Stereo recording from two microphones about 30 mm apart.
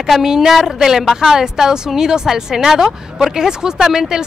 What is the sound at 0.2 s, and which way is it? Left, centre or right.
A woman's voice, centre.